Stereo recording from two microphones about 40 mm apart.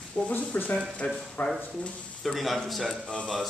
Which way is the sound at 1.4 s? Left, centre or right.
Left.